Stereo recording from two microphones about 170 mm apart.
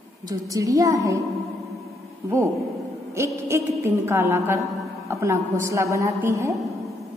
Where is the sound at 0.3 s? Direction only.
20° right (ahead or behind).